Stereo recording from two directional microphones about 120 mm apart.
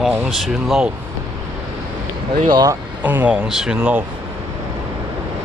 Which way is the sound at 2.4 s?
35° right (ahead or behind).